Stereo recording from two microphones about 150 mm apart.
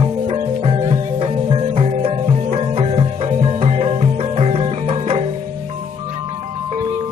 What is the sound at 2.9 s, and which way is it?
Music, 45° right (ahead or behind).